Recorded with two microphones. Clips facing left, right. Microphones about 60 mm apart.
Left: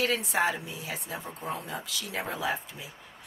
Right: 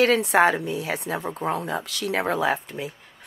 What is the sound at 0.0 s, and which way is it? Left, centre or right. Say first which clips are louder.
Speech: right 9 dB; right.